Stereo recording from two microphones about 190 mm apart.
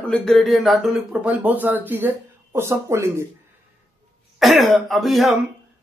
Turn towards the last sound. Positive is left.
turn(degrees=0)  # may be behind; listen again after turning